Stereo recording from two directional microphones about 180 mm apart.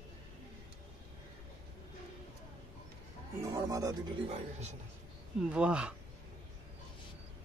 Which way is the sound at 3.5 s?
20° right (ahead or behind).